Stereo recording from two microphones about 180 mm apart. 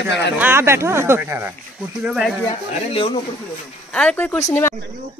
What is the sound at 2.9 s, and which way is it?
Speech, 30° left (ahead or behind).